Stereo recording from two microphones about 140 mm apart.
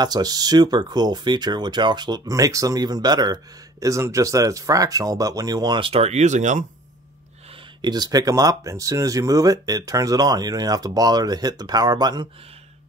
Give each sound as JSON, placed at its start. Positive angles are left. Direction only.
{"t": 0.0, "sound": "speech", "side_deg": -30}
{"t": 7.8, "sound": "speech", "side_deg": -30}